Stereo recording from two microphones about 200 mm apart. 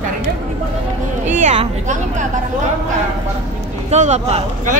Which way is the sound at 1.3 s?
35° right (ahead or behind).